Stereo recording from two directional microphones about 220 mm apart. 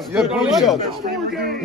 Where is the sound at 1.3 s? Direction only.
45° right (ahead or behind).